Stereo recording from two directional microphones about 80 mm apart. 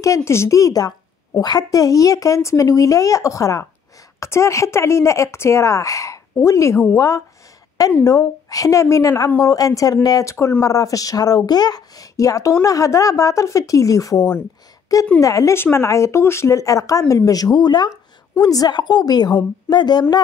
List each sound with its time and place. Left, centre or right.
0.0 s speech: left
8.0 s speech: left